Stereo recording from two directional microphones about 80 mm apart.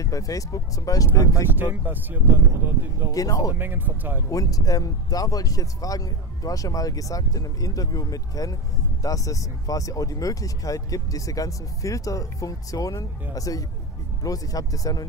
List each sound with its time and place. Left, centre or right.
0.0 s speech: left
1.3 s speech: right
3.1 s speech: left
3.5 s speech: right
4.3 s speech: left